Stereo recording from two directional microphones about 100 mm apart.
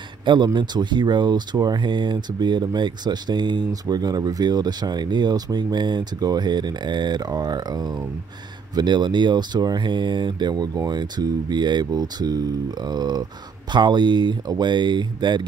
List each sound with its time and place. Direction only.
0.2 s a man's voice: 50° right (ahead or behind)